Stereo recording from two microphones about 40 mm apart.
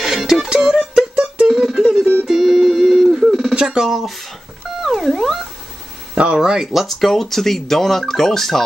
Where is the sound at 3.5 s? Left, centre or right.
Centre.